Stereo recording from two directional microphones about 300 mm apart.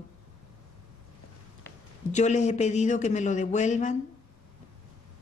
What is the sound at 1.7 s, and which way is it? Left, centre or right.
A man's voice, left.